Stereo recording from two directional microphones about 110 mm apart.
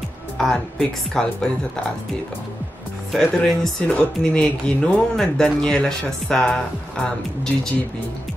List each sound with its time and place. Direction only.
0.4 s speech: 5° left (ahead or behind)
3.1 s speech: centre (ahead or behind)